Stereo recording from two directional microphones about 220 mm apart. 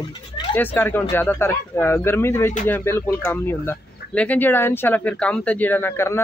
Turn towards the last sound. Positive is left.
turn(degrees=10)  # may be behind; listen again after turning